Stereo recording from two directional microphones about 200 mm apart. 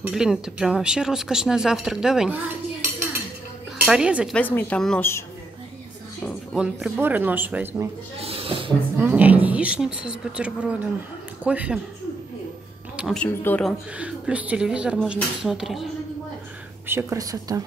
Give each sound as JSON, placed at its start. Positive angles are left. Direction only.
{"t": 0.0, "sound": "speech", "side_deg": -5}
{"t": 3.7, "sound": "speech", "side_deg": -5}
{"t": 4.4, "sound": "speech", "side_deg": 10}
{"t": 6.2, "sound": "speech", "side_deg": -5}
{"t": 8.2, "sound": "speech", "side_deg": -30}
{"t": 9.0, "sound": "speech", "side_deg": -10}
{"t": 12.9, "sound": "speech", "side_deg": 0}
{"t": 13.9, "sound": "speech", "side_deg": -5}
{"t": 16.8, "sound": "speech", "side_deg": -15}